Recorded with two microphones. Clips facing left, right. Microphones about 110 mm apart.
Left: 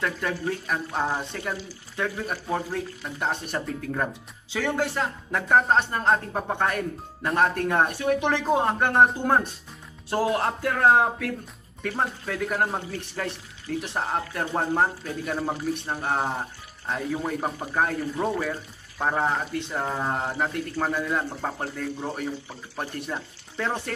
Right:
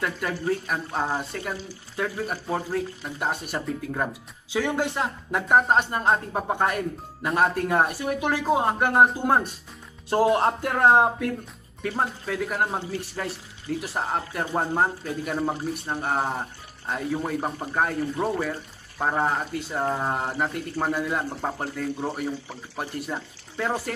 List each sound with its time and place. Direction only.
0.0 s speech: 5° right (ahead or behind)
10.2 s speech: 25° right (ahead or behind)
12.3 s speech: 5° right (ahead or behind)